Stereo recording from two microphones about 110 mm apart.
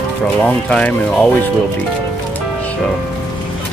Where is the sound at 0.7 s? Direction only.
10° left (ahead or behind).